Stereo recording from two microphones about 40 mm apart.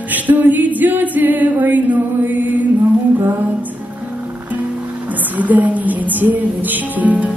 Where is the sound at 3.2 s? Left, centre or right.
Right.